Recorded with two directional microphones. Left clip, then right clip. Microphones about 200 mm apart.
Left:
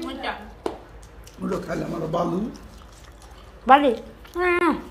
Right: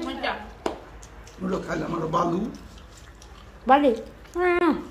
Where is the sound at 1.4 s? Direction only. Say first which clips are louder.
Left 1 dB; 55° left (ahead or behind).